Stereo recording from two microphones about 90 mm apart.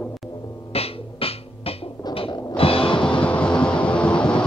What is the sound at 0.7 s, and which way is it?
Music, 90° left.